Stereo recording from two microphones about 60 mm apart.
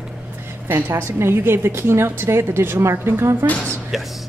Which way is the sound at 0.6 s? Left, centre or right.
Right.